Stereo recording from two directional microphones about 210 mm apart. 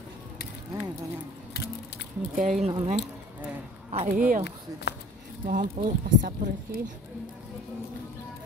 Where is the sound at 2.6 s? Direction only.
30° right (ahead or behind).